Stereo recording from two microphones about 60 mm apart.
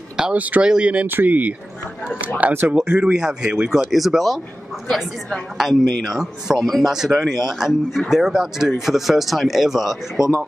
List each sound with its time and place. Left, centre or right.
0.2 s speech: right
1.0 s speech: right; by 3.9 s centre
3.9 s speech: centre